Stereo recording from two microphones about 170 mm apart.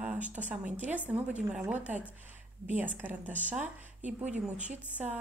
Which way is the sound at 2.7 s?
10° right (ahead or behind).